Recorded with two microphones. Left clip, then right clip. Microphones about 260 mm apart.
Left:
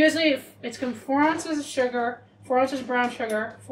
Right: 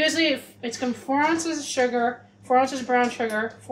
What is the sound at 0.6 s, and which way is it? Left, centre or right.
A woman's voice, right.